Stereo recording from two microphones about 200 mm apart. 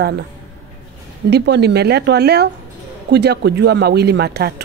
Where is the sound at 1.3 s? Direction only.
55° right (ahead or behind).